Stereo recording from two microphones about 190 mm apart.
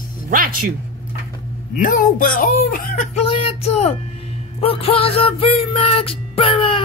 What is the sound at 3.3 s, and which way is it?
Speech, 30° left (ahead or behind).